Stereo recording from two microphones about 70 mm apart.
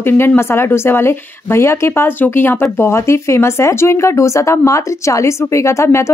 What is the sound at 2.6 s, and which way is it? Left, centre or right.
Speech, left.